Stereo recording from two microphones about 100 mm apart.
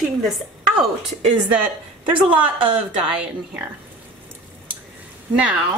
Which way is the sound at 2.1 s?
55° right (ahead or behind).